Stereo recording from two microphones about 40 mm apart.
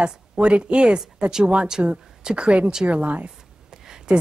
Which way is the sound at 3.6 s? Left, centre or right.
Centre.